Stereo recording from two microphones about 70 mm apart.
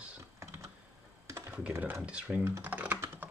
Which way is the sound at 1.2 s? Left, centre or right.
Right.